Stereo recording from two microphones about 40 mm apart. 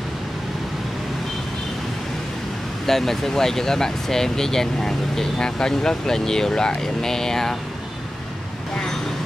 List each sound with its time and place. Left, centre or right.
2.9 s speech: centre